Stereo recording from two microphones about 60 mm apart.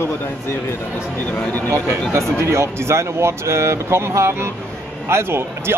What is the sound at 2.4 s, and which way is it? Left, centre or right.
Speech, right.